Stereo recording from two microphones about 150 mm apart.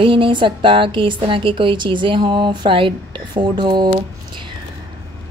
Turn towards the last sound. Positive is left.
turn(degrees=-30)  # may be behind; listen again after turning